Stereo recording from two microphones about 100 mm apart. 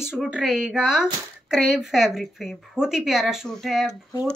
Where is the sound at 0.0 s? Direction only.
5° right (ahead or behind).